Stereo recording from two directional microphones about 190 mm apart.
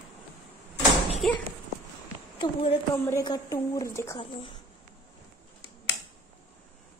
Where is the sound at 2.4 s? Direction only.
25° left (ahead or behind).